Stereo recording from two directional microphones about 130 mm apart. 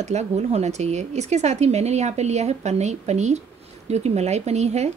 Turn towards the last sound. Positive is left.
turn(degrees=-60)  # may be behind; listen again after turning